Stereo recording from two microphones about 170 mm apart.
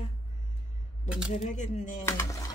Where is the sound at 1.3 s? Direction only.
45° left (ahead or behind).